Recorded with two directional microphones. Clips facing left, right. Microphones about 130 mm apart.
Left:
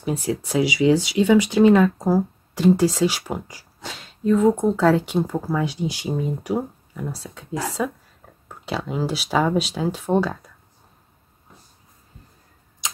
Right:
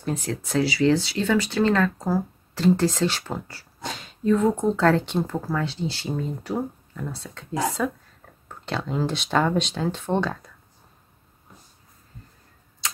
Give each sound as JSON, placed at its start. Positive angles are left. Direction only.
{"t": 0.0, "sound": "speech", "side_deg": 10}
{"t": 3.8, "sound": "speech", "side_deg": 0}
{"t": 12.8, "sound": "tick-tock", "side_deg": 15}